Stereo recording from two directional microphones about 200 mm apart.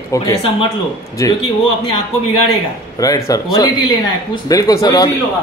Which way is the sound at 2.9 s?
15° left (ahead or behind).